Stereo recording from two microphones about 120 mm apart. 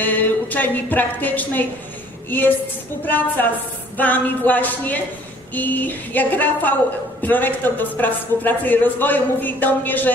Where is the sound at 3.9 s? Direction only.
15° left (ahead or behind).